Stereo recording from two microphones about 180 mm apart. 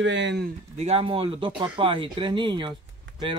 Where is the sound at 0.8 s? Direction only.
35° right (ahead or behind).